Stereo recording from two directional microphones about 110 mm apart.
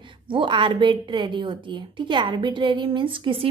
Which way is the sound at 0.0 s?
50° right (ahead or behind).